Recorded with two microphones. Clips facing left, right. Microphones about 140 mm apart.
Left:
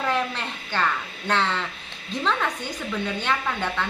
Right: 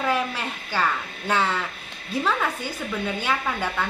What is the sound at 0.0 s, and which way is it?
A woman's voice, 10° right (ahead or behind).